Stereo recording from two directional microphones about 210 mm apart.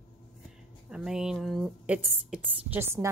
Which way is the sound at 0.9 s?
5° right (ahead or behind).